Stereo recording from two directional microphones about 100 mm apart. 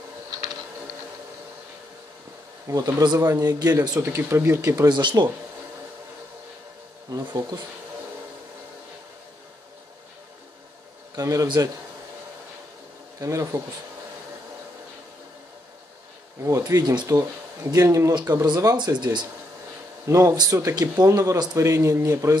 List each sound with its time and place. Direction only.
2.7 s speech: 40° right (ahead or behind)
4.0 s speech: 25° right (ahead or behind)
4.8 s speech: 50° right (ahead or behind)
7.1 s speech: 35° right (ahead or behind)
11.1 s speech: 35° right (ahead or behind)
13.2 s speech: 35° right (ahead or behind)
16.4 s speech: 35° right (ahead or behind)